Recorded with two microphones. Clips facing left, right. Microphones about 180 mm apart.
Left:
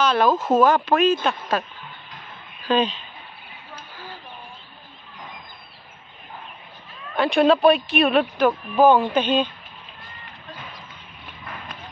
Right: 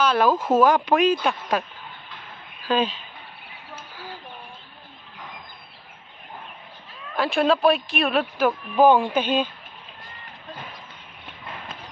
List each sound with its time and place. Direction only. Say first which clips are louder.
0.0 s speech: left 1 dB; 10° right (ahead or behind)
7.2 s speech: left 3 dB; centre (ahead or behind)
11.4 s clip-clop: even; 25° right (ahead or behind)